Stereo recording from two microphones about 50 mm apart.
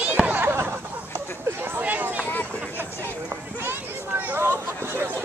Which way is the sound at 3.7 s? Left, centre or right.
Right.